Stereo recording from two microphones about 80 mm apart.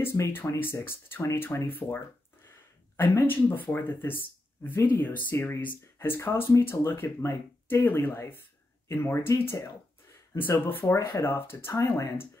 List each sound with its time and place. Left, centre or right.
0.0 s speech: left
3.0 s speech: left